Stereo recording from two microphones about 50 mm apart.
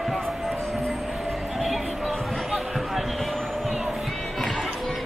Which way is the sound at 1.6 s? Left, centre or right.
Centre.